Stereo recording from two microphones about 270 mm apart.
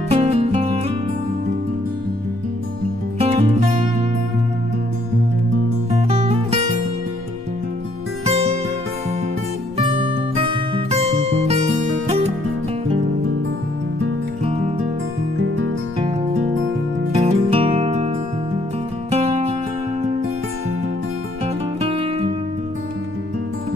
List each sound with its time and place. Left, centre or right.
0.1 s music: right
3.2 s music: right
5.9 s music: right
8.3 s music: right
9.8 s music: centre
17.1 s music: right
21.8 s music: right